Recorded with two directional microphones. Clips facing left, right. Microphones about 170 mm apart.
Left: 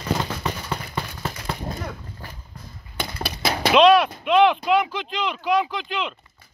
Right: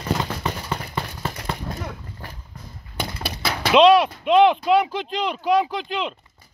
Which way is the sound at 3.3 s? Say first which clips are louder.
Left 1 dB; 25° right (ahead or behind).